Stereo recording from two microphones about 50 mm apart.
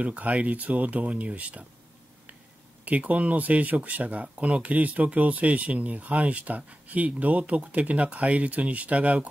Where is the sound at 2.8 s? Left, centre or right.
Right.